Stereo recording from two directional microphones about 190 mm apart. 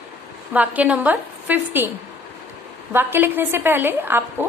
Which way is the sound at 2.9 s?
10° right (ahead or behind).